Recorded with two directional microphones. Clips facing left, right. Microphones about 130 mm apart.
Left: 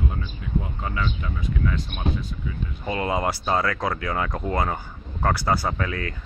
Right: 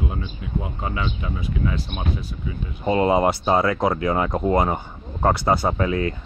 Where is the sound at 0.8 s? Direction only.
20° right (ahead or behind).